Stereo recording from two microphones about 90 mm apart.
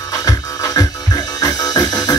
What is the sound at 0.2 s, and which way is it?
Music, 40° left (ahead or behind).